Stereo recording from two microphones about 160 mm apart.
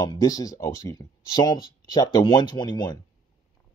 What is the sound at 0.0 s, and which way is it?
Speech, 20° left (ahead or behind).